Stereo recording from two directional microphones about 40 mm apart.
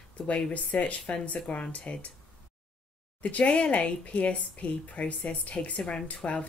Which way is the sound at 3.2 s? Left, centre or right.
Left.